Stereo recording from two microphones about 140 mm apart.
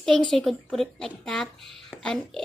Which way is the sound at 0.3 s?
5° left (ahead or behind).